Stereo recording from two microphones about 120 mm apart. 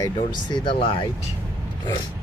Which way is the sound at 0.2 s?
45° left (ahead or behind).